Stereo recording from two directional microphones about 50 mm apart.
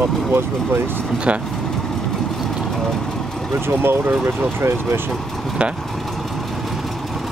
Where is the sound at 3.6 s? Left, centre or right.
Right.